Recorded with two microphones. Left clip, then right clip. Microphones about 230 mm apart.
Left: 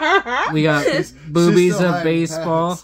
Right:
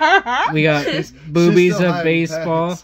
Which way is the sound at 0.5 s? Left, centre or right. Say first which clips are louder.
Even; centre.